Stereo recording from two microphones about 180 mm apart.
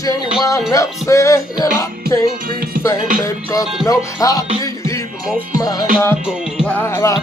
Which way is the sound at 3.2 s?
20° left (ahead or behind).